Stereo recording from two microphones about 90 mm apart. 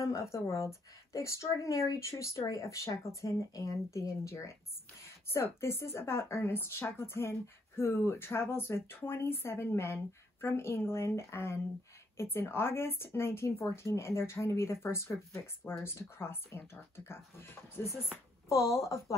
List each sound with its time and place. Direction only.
0.0 s a woman's voice: 35° left (ahead or behind)